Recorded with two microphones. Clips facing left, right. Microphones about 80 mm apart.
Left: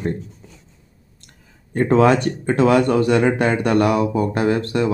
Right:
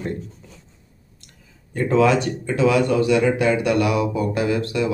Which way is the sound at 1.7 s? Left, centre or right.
Left.